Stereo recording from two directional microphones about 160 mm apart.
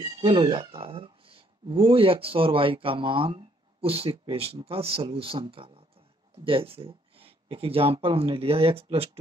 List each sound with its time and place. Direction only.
0.2 s speech: 30° right (ahead or behind)